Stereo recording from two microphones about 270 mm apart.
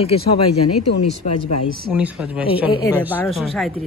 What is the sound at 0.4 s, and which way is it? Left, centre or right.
Speech, left.